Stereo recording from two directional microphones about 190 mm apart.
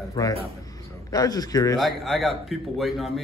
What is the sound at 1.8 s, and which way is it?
A man's voice, centre (ahead or behind).